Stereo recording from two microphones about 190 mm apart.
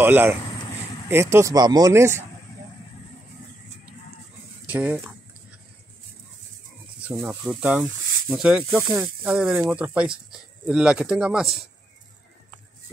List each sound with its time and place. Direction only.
0.0 s speech: 10° right (ahead or behind)
4.6 s speech: 10° right (ahead or behind)
7.0 s speech: 10° right (ahead or behind)